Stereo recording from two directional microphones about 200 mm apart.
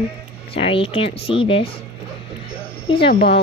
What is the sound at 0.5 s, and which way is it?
Speech, 25° left (ahead or behind).